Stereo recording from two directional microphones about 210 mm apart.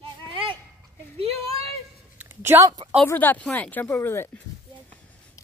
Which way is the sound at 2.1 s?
10° right (ahead or behind).